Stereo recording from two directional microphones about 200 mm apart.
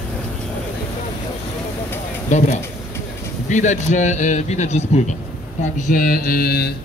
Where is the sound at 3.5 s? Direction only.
35° left (ahead or behind).